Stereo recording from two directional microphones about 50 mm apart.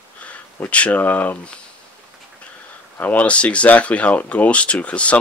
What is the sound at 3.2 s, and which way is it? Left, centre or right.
Speech, left.